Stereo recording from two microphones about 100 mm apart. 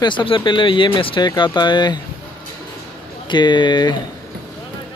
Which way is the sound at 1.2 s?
45° left (ahead or behind).